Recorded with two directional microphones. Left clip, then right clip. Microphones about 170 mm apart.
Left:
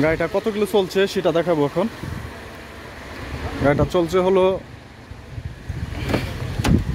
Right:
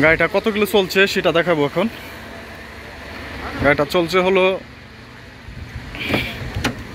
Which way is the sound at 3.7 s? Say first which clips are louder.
Right 3 dB; 20° left (ahead or behind).